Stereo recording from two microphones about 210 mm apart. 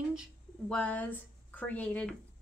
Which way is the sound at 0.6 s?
5° left (ahead or behind).